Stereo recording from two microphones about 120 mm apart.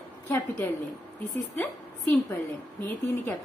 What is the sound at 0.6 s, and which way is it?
Speech, 15° left (ahead or behind).